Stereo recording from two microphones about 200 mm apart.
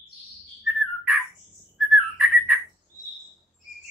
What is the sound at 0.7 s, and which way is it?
Bird, centre (ahead or behind).